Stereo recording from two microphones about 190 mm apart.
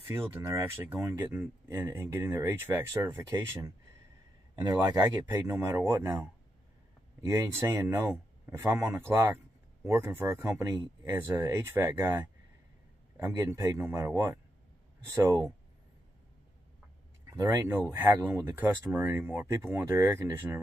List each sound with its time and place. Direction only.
0.3 s a man's voice: 15° right (ahead or behind)
17.3 s speech: 15° right (ahead or behind)